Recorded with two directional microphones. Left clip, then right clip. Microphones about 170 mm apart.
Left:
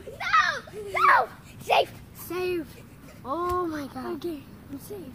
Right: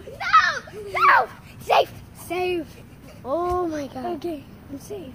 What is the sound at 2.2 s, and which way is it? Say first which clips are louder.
Speech: right 4 dB; 50° left (ahead or behind).